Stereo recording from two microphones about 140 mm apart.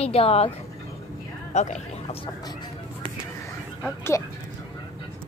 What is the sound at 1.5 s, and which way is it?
Speech, 55° left (ahead or behind).